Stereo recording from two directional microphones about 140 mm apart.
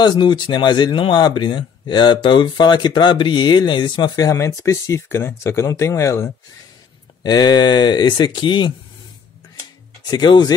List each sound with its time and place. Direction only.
0.0 s speech: 35° left (ahead or behind)
10.0 s speech: 35° left (ahead or behind)